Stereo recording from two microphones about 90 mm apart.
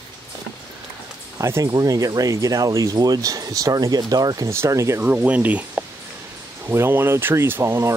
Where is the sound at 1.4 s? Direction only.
30° right (ahead or behind).